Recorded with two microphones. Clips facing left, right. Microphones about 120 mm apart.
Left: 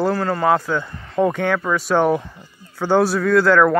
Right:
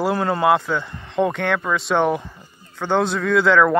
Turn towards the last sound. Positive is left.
turn(degrees=0)  # may be behind; listen again after turning